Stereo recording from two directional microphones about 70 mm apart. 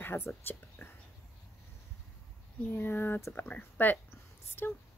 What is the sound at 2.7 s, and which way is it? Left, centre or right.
Speech, left.